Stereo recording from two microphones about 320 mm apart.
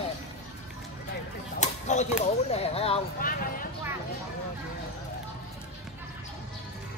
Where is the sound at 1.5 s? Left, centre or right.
Left.